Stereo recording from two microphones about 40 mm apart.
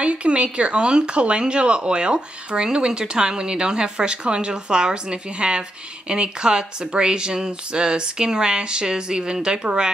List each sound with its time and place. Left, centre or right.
0.0 s speech: right